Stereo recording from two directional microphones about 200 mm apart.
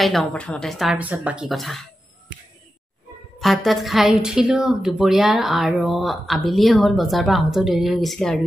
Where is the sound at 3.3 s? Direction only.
Centre (ahead or behind).